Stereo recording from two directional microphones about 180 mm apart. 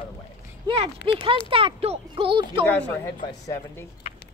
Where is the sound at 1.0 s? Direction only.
30° right (ahead or behind).